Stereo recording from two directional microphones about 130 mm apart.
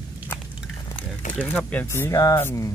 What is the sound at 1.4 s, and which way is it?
Speech, 10° left (ahead or behind).